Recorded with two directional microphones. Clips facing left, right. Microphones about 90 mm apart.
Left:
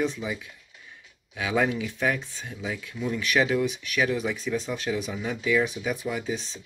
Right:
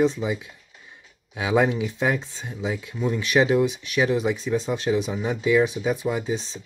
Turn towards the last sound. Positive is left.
turn(degrees=-25)  # may be behind; listen again after turning